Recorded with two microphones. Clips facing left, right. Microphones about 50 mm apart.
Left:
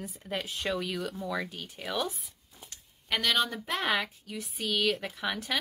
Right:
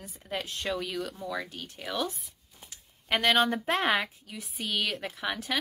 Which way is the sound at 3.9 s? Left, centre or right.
Centre.